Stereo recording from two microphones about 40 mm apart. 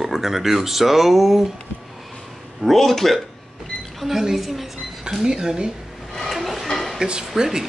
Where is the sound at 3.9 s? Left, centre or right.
Centre.